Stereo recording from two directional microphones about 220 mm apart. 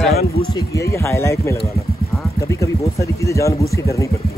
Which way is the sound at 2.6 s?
15° left (ahead or behind).